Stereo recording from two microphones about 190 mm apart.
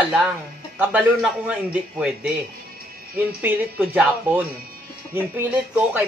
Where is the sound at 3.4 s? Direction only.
10° right (ahead or behind).